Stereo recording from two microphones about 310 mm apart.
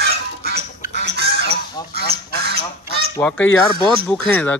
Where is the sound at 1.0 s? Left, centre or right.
Right.